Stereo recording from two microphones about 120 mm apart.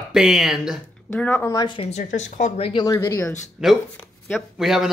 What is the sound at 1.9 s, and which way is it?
Speech, 85° left.